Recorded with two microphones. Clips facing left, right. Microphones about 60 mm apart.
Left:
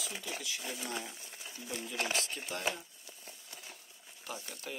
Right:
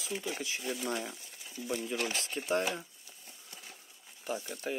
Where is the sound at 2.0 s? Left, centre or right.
Left.